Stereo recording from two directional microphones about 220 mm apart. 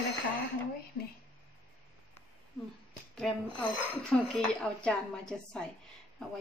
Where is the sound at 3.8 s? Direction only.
5° right (ahead or behind).